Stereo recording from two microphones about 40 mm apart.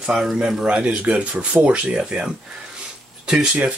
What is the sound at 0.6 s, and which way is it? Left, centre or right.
Speech, right.